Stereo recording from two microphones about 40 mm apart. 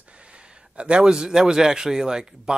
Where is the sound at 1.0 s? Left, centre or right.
Centre.